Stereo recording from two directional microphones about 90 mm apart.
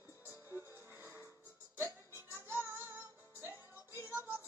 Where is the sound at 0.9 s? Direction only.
25° right (ahead or behind).